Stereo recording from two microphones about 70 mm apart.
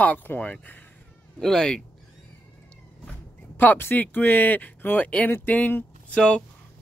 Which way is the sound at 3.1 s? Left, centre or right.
Left.